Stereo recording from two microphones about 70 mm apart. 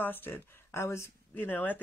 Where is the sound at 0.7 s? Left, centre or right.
Left.